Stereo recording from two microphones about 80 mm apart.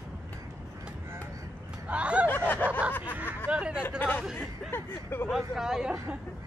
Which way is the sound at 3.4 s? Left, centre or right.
Centre.